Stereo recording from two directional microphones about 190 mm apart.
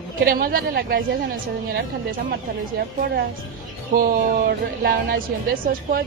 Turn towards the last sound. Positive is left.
turn(degrees=-50)  # may be behind; listen again after turning